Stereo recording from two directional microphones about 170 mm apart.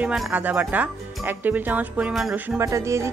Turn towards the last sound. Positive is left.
turn(degrees=-15)  # may be behind; listen again after turning